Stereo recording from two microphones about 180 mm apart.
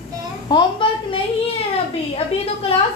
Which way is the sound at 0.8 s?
25° left (ahead or behind).